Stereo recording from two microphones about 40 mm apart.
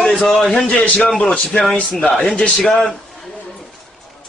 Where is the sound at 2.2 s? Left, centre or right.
Centre.